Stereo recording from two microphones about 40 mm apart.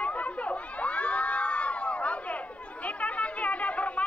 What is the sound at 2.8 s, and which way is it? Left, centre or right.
Chatter, left.